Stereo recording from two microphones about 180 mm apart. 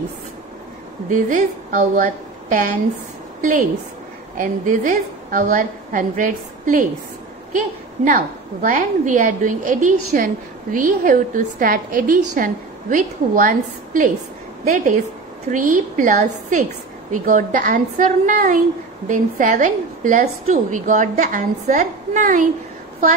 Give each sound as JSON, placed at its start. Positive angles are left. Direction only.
{"t": 1.1, "sound": "a woman's voice", "side_deg": -45}